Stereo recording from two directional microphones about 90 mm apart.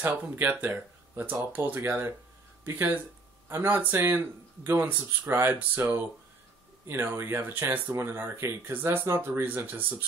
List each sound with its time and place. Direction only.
0.0 s speech: 20° right (ahead or behind)